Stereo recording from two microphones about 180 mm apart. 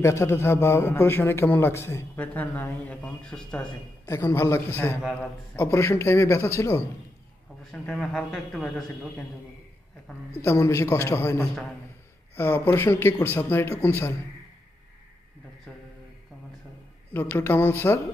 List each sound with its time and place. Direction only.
0.0 s a man's voice: 15° left (ahead or behind)
4.0 s a man's voice: 15° left (ahead or behind)
10.0 s a man's voice: 15° left (ahead or behind)
17.1 s a man's voice: 10° left (ahead or behind)